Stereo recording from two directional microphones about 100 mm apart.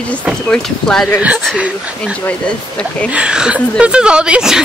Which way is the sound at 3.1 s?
10° right (ahead or behind).